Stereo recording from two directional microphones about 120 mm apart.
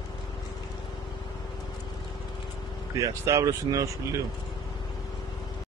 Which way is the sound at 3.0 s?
25° right (ahead or behind).